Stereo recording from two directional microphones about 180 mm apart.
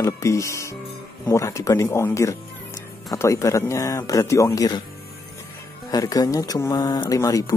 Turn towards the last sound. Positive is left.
turn(degrees=20)  # may be behind; listen again after turning